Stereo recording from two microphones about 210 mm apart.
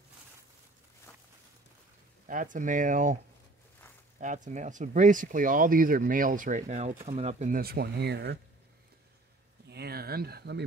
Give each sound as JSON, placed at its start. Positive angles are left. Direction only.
{"t": 1.1, "sound": "walk", "side_deg": 10}
{"t": 2.2, "sound": "speech", "side_deg": -40}
{"t": 4.2, "sound": "speech", "side_deg": -35}
{"t": 9.7, "sound": "a sound", "side_deg": -50}